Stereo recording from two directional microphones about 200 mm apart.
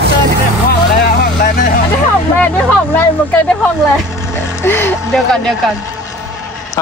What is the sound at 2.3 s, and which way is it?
Speech, 5° left (ahead or behind).